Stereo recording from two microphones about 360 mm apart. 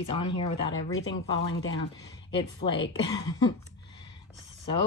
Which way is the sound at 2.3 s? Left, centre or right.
Centre.